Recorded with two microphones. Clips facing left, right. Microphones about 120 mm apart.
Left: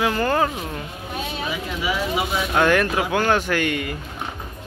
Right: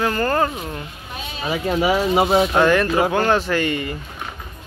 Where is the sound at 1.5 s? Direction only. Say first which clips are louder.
Right 10 dB; 45° right (ahead or behind).